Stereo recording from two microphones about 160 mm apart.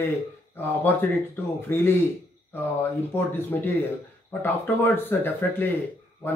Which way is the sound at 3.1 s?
15° left (ahead or behind).